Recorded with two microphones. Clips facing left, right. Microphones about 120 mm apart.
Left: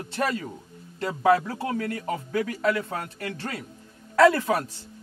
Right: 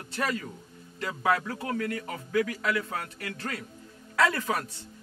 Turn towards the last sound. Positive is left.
turn(degrees=35)  # may be behind; listen again after turning